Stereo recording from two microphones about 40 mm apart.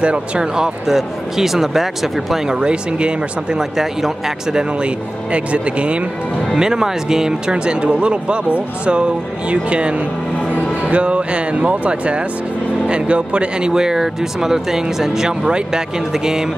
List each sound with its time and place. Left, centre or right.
0.0 s speech: right
0.6 s speech: centre
2.6 s speech: right
3.5 s speech: centre
4.8 s speech: right
6.5 s speech: centre